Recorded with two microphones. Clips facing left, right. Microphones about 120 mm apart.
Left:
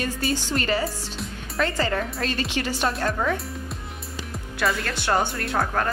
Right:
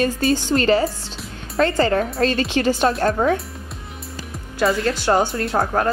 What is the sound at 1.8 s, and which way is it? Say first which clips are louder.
Speech: right 8 dB; 45° right (ahead or behind).